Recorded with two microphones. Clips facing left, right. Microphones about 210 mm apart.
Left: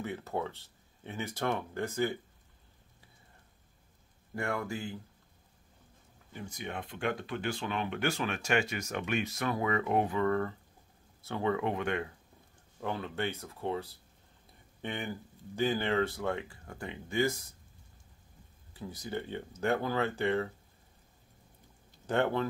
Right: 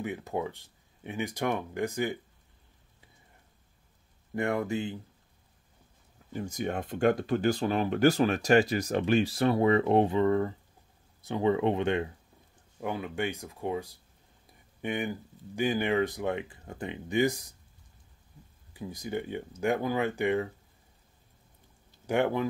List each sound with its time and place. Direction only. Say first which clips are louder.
0.0 s speech: right 3 dB; 15° right (ahead or behind)
4.4 s speech: right 6 dB; 20° right (ahead or behind)
6.3 s speech: right 8 dB; 45° right (ahead or behind); by 12.1 s 25° right (ahead or behind)
12.8 s speech: right 3 dB; 15° right (ahead or behind)
18.7 s speech: right 4 dB; 15° right (ahead or behind)
22.0 s speech: right 3 dB; 10° right (ahead or behind)